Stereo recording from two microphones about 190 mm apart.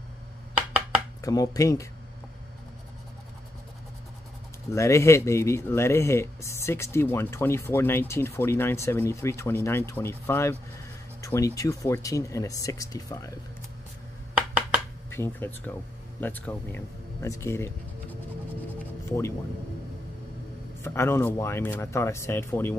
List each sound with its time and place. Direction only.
1.2 s speech: 20° left (ahead or behind)
4.6 s speech: 15° left (ahead or behind)
15.0 s speech: 10° left (ahead or behind)
20.8 s speech: 15° left (ahead or behind)